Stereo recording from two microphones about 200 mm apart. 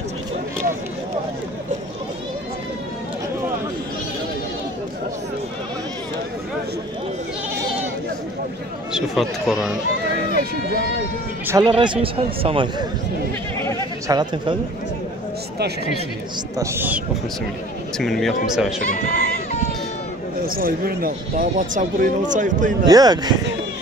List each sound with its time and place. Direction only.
8.9 s speech: centre (ahead or behind)
11.4 s speech: 20° right (ahead or behind)
14.0 s speech: 20° right (ahead or behind)
16.5 s speech: 10° right (ahead or behind)
17.9 s speech: centre (ahead or behind)
18.9 s speech: 40° left (ahead or behind)
20.4 s speech: 45° right (ahead or behind)
22.8 s speech: 20° right (ahead or behind)